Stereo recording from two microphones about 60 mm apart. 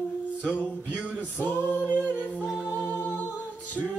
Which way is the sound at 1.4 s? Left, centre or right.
Left.